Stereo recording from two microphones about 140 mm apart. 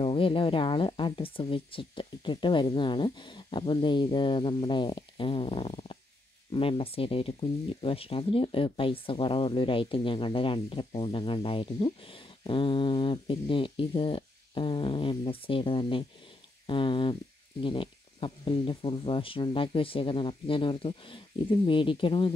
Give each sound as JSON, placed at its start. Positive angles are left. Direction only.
{"t": 0.0, "sound": "speech", "side_deg": 40}